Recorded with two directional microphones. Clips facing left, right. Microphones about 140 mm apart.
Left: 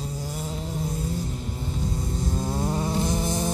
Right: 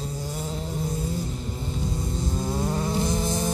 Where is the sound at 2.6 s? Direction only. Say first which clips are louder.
Even; 15° left (ahead or behind).